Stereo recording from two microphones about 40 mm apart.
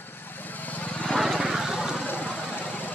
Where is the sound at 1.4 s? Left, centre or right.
Centre.